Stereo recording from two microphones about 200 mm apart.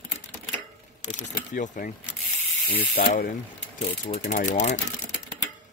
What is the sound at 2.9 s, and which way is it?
Mechanisms, 50° left (ahead or behind).